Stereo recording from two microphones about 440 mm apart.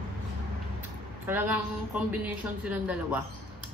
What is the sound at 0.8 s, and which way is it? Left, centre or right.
A woman's voice, centre.